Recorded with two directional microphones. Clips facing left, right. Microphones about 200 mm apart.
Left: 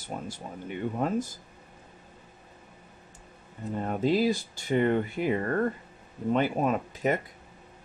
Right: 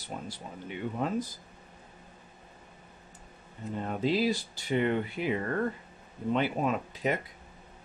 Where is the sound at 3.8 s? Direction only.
45° left (ahead or behind).